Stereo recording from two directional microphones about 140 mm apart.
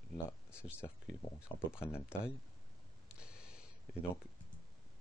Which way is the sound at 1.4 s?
15° left (ahead or behind).